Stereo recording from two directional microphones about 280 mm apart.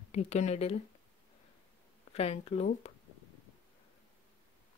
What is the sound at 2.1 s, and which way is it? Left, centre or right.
Speech, left.